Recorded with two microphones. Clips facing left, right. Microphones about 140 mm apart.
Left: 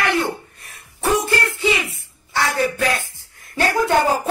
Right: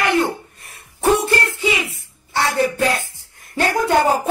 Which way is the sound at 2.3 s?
30° right (ahead or behind).